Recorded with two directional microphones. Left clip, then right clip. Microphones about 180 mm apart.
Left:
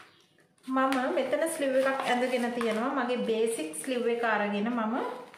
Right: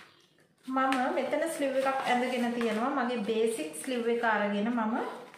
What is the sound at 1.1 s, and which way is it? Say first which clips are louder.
A woman's voice: left 2 dB; 25° left (ahead or behind).